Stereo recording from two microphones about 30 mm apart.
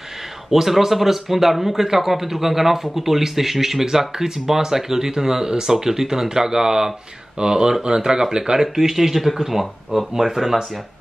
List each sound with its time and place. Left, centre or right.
0.5 s speech: centre; by 8.5 s right
8.5 s speech: centre